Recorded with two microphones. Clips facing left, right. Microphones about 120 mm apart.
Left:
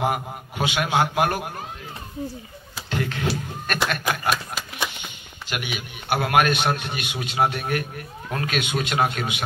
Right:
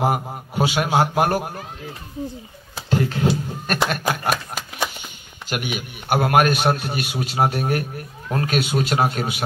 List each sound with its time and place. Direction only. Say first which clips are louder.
0.0 s a man's voice: right 3 dB; 40° right (ahead or behind)
2.9 s a sound: right 6 dB; 35° right (ahead or behind)
3.6 s a man's voice: right 2 dB; 40° right (ahead or behind)